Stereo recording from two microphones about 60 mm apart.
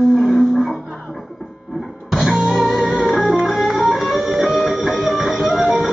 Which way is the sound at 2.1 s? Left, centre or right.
Centre.